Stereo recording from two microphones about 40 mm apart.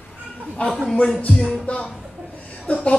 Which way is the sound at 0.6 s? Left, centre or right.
Left.